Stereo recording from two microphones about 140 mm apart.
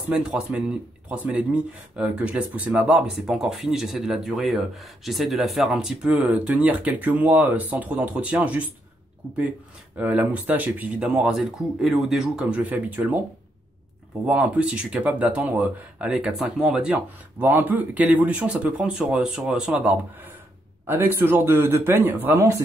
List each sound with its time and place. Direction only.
0.1 s speech: 5° right (ahead or behind)
9.9 s speech: 10° right (ahead or behind)
14.2 s speech: 10° right (ahead or behind)